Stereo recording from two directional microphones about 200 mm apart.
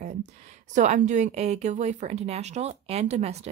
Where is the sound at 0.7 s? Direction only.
35° right (ahead or behind).